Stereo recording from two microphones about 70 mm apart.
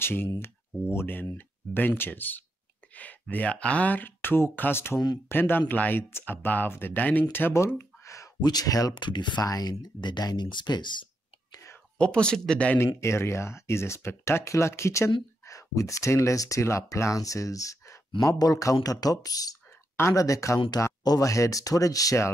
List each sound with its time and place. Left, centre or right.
0.0 s speech: left
7.6 s a sound: left
8.4 s speech: left
12.0 s speech: centre
12.7 s speech: left
20.0 s speech: left
21.3 s speech: left